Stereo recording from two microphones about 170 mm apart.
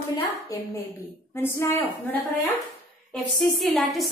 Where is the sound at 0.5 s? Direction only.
20° left (ahead or behind); by 4.0 s centre (ahead or behind).